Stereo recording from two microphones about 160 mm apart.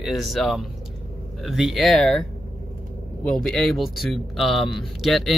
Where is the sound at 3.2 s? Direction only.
5° left (ahead or behind).